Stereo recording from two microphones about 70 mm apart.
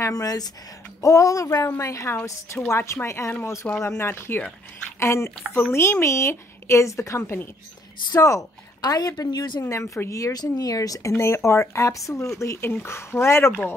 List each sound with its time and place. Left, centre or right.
0.1 s speech: left
1.0 s speech: left
8.8 s speech: left
9.7 s speech: left
10.4 s speech: left